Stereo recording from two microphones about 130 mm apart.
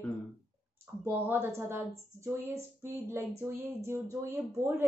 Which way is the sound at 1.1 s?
15° right (ahead or behind).